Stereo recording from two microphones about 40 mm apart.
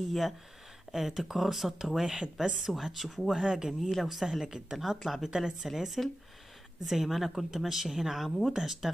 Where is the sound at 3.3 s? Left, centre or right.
Centre.